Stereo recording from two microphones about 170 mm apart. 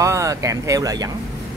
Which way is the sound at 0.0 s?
20° right (ahead or behind).